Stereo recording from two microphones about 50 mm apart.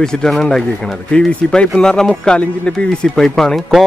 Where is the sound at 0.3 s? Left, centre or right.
Centre.